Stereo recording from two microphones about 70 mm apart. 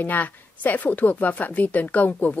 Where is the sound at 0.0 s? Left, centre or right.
Left.